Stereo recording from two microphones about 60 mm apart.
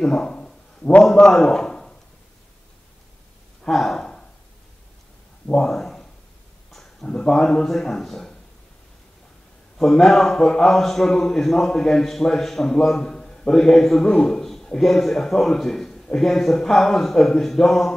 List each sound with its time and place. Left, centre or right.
0.0 s a man's voice: centre
3.6 s gasp: centre
5.5 s speech: centre
6.7 s a sound: centre
7.1 s a man's voice: centre
9.8 s a man's voice: centre